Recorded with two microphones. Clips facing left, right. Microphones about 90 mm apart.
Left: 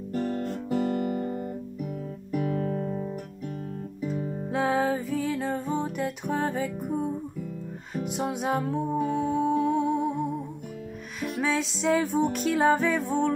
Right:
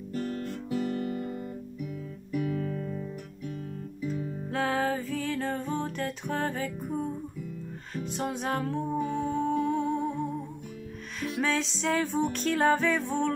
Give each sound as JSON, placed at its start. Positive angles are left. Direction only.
{"t": 0.1, "sound": "guitar", "side_deg": 30}
{"t": 4.5, "sound": "music", "side_deg": 15}